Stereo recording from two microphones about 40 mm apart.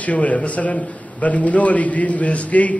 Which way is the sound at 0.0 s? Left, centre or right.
Left.